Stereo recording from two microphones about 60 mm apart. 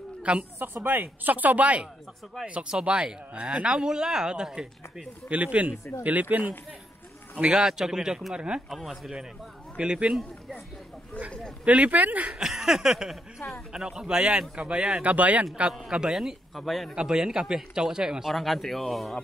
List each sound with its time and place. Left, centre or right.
0.2 s speech: centre
0.8 s speech: right; by 5.0 s centre
5.3 s speech: right
7.3 s speech: centre
8.6 s speech: centre
9.8 s speech: centre
11.1 s speech: left
11.6 s speech: right
12.3 s speech: centre; by 15.4 s right
15.9 s speech: centre
16.9 s speech: centre
18.3 s speech: centre